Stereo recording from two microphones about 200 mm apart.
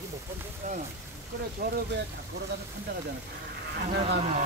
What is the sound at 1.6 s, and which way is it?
Speech, 55° right (ahead or behind).